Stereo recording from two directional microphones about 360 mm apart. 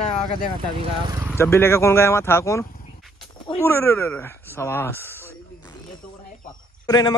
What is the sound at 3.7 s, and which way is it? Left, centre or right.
Speech, centre.